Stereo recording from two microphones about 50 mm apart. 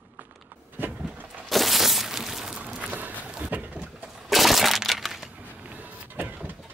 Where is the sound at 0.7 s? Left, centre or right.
Right.